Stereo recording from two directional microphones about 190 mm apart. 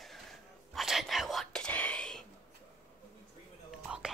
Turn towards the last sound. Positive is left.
turn(degrees=-5)  # may be behind; listen again after turning